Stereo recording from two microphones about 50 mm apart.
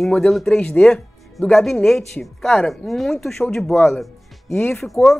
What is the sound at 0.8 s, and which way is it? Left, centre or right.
Speech, centre.